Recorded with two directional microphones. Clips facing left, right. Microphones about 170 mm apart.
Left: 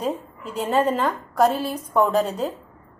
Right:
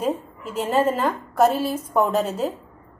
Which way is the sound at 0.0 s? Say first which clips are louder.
Right 2 dB; 5° right (ahead or behind).